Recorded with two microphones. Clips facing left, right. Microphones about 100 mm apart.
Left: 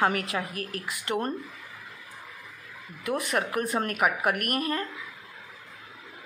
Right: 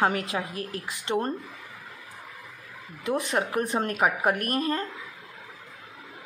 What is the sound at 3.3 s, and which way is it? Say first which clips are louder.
A woman's voice: right 1 dB; 25° right (ahead or behind).